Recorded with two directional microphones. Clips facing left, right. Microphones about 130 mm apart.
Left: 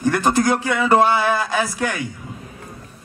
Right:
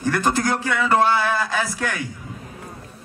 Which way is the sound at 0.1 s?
15° left (ahead or behind).